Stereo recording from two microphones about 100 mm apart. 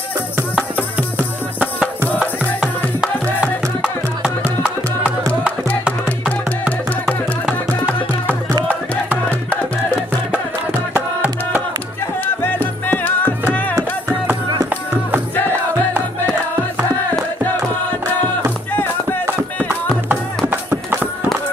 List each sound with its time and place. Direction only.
0.9 s music: 15° right (ahead or behind)
11.0 s music: 15° right (ahead or behind)
12.4 s music: 20° left (ahead or behind)
18.7 s music: 20° left (ahead or behind)
20.4 s horse: 25° right (ahead or behind)